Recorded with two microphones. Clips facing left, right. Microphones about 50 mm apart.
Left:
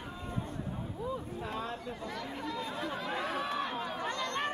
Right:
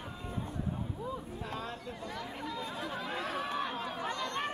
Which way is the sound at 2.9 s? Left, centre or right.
Centre.